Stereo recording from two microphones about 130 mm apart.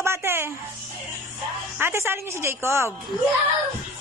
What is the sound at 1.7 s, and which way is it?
A woman's voice, 20° right (ahead or behind).